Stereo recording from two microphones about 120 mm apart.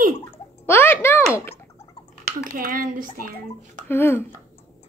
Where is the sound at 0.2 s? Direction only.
20° left (ahead or behind).